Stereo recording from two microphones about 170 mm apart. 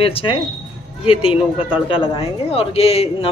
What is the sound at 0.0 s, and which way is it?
A man's voice, 30° left (ahead or behind).